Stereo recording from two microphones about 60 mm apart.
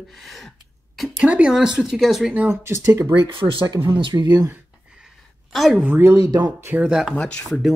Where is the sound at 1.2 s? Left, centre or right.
Centre.